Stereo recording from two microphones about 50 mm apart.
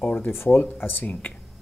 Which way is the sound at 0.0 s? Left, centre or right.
Left.